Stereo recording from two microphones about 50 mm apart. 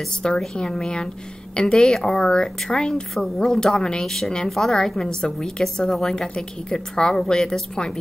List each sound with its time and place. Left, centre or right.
0.2 s a woman's voice: centre